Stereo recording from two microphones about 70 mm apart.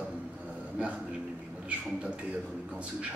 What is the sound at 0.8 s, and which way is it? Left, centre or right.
A man's voice, centre.